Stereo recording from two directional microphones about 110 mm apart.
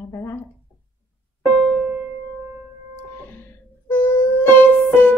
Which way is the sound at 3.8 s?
20° left (ahead or behind).